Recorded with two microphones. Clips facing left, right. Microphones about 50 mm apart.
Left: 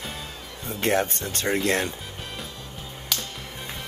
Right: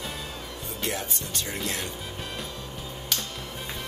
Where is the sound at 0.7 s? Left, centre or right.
Left.